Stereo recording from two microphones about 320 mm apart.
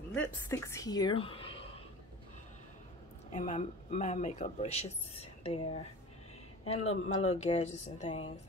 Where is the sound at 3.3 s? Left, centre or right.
Left.